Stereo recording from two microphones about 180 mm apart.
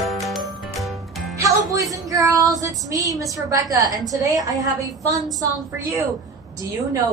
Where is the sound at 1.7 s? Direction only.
20° right (ahead or behind).